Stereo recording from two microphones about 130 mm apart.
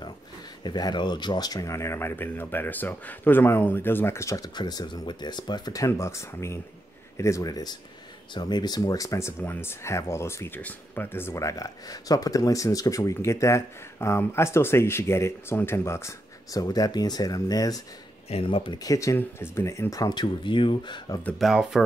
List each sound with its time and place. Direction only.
0.7 s speech: 35° left (ahead or behind)
18.3 s speech: 45° left (ahead or behind)
18.8 s speech: 25° left (ahead or behind)
21.4 s speech: 5° right (ahead or behind)